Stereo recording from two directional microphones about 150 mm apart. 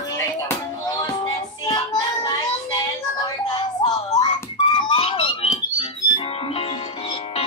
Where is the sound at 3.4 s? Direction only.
25° left (ahead or behind).